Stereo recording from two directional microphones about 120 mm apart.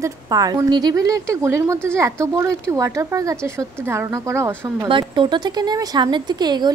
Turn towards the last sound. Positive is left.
turn(degrees=-35)  # may be behind; listen again after turning